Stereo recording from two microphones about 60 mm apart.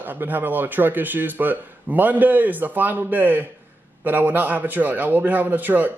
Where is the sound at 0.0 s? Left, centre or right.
Right.